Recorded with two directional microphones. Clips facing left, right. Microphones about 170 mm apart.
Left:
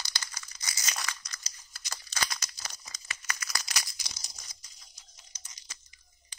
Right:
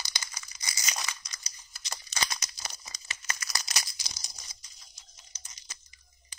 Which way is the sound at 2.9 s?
30° right (ahead or behind).